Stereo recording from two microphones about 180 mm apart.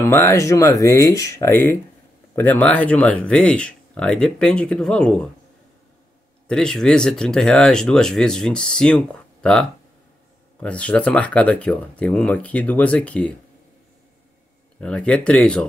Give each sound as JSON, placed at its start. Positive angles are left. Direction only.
{"t": 0.0, "sound": "speech", "side_deg": 15}
{"t": 6.4, "sound": "speech", "side_deg": 5}
{"t": 14.8, "sound": "speech", "side_deg": 5}